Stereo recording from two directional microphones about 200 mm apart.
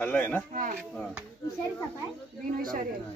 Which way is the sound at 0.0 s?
10° left (ahead or behind).